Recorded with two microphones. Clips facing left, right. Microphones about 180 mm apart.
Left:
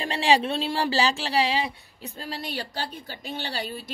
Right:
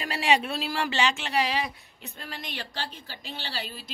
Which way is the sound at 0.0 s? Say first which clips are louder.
Left 3 dB; 30° left (ahead or behind).